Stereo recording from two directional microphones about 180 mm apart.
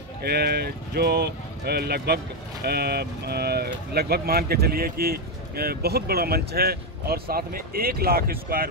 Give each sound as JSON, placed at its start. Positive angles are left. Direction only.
{"t": 0.2, "sound": "speech", "side_deg": -60}